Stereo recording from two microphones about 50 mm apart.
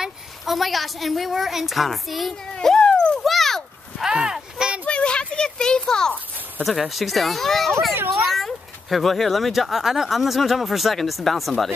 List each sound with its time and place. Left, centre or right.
0.5 s speech: centre
2.6 s dog: centre
3.2 s dog: centre
4.0 s a sound: centre
4.8 s a sound: left
6.6 s speech: centre